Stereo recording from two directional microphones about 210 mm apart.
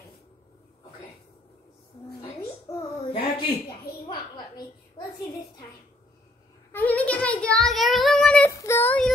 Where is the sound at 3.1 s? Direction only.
25° left (ahead or behind).